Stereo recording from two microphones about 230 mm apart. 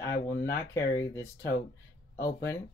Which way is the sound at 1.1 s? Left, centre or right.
Centre.